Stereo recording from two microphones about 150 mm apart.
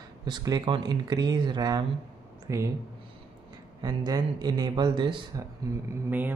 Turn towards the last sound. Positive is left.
turn(degrees=-10)  # may be behind; listen again after turning